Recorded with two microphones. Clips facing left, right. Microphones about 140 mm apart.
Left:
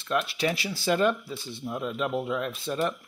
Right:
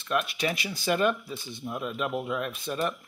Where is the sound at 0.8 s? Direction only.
20° left (ahead or behind).